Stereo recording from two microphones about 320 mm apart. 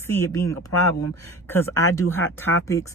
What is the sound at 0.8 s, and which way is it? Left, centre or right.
Speech, left.